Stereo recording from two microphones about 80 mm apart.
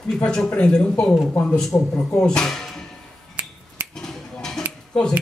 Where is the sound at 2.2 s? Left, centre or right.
Centre.